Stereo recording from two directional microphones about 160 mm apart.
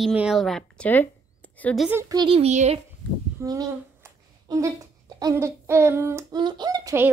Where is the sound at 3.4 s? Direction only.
20° right (ahead or behind).